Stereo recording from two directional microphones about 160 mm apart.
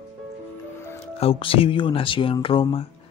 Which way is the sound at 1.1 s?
35° left (ahead or behind).